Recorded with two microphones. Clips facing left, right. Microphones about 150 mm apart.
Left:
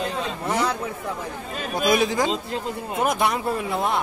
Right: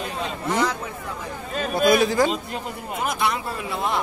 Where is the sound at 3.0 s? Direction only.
45° left (ahead or behind).